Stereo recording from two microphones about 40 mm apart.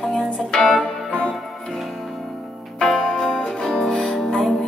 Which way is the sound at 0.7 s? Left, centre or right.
Left.